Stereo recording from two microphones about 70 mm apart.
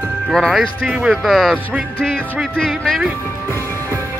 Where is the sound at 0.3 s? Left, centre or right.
Centre.